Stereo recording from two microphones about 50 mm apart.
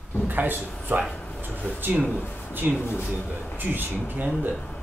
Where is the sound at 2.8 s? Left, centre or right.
Left.